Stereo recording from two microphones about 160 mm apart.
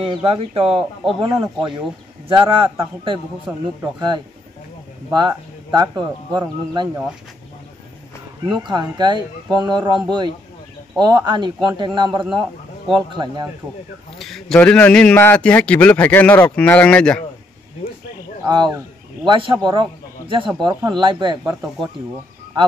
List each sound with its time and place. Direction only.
0.0 s a man's voice: 35° right (ahead or behind)
8.5 s speech: 30° right (ahead or behind)
14.1 s a man's voice: centre (ahead or behind)
18.4 s a man's voice: 25° right (ahead or behind)